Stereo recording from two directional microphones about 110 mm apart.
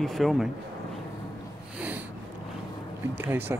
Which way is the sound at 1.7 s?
15° right (ahead or behind).